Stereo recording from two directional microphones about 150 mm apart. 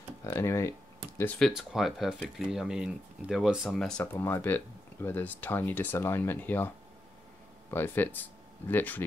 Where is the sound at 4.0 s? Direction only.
15° left (ahead or behind).